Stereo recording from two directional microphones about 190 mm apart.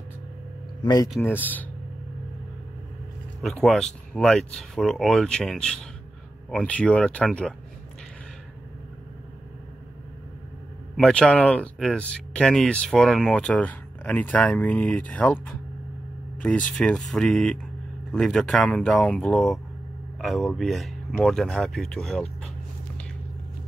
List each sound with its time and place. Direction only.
0.8 s speech: 20° left (ahead or behind)
1.2 s speech: 10° left (ahead or behind)
3.4 s speech: centre (ahead or behind)
11.0 s speech: 5° left (ahead or behind)
16.4 s speech: 5° left (ahead or behind)